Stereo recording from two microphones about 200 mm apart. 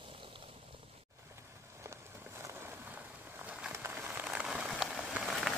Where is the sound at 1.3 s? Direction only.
15° right (ahead or behind).